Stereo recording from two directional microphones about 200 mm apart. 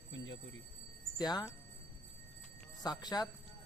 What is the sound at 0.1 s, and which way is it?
Alarm clock, 70° left (ahead or behind).